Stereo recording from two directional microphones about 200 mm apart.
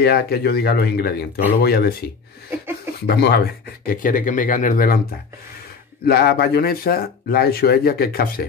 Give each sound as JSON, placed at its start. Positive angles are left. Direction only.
{"t": 0.0, "sound": "speech", "side_deg": 50}
{"t": 3.1, "sound": "speech", "side_deg": 55}
{"t": 6.0, "sound": "speech", "side_deg": 50}